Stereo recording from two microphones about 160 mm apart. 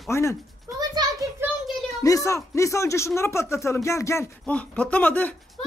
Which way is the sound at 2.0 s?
20° left (ahead or behind).